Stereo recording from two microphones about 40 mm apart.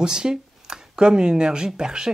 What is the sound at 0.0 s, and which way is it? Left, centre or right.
Speech, centre.